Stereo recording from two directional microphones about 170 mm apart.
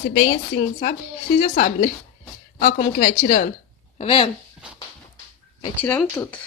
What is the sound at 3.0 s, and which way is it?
Speech, 60° left (ahead or behind).